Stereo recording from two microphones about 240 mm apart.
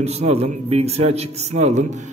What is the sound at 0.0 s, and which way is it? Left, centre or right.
A man's voice, right.